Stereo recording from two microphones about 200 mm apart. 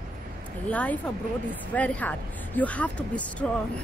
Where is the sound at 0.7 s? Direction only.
5° left (ahead or behind).